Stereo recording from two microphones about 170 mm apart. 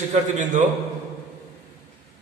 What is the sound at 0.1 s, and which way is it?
Speech, 45° right (ahead or behind).